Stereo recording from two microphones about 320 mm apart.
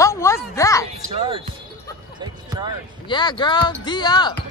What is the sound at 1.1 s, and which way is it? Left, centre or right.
Music, centre.